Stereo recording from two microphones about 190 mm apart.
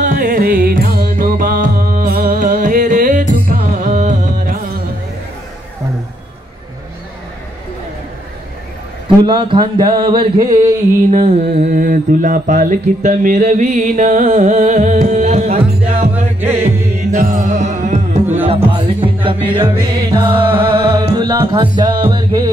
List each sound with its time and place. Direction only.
0.0 s music: 45° right (ahead or behind)
9.2 s music: 25° right (ahead or behind)
11.1 s mantra: 35° right (ahead or behind)
16.1 s music: 10° right (ahead or behind)
17.2 s music: 40° right (ahead or behind); by 22.4 s 25° right (ahead or behind)